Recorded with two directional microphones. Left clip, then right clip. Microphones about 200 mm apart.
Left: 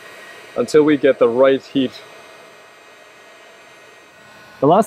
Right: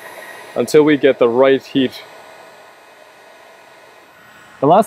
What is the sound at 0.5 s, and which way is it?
Speech, 40° right (ahead or behind).